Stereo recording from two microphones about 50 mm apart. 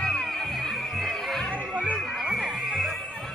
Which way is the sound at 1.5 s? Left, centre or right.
Right.